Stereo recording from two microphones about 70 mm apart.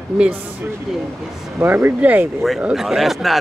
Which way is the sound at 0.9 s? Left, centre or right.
Centre.